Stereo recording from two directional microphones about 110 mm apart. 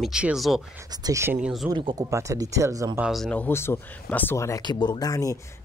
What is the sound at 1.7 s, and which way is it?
Speech, 45° right (ahead or behind).